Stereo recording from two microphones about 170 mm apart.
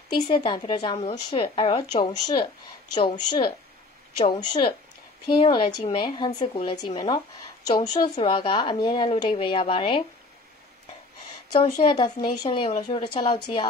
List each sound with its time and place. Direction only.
0.1 s a woman's voice: 25° left (ahead or behind)
11.2 s a woman's voice: 25° left (ahead or behind)